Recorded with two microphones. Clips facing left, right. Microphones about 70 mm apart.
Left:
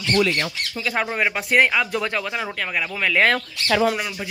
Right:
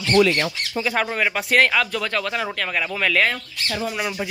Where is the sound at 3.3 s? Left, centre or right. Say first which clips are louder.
Left 7 dB; left.